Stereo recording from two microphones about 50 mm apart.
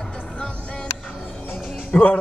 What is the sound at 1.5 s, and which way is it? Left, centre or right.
Music, left.